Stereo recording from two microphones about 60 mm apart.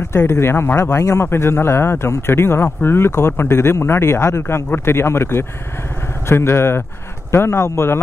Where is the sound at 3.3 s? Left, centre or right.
Left.